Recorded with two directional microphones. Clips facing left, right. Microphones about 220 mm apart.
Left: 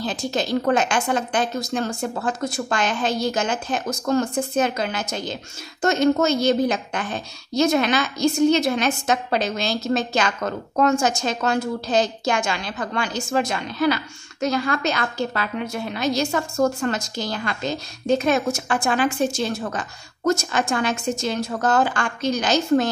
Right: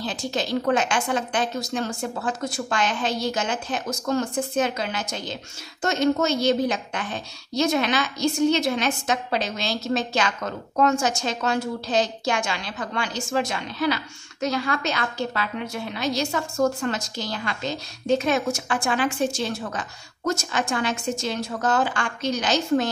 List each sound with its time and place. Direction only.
0.0 s a woman's voice: 45° left (ahead or behind)